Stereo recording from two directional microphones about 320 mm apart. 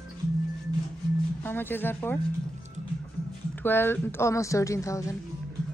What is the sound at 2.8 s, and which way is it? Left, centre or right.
Music, right.